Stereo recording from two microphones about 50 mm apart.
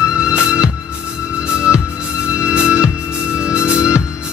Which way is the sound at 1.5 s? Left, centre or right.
Centre.